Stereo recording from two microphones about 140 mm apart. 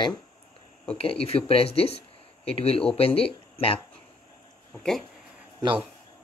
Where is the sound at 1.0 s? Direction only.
45° left (ahead or behind).